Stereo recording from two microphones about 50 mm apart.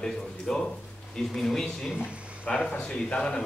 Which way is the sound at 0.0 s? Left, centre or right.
Centre.